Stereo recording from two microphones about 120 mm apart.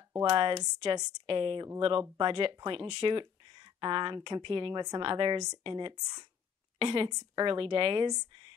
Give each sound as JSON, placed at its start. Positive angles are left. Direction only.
{"t": 0.2, "sound": "a woman's voice", "side_deg": -40}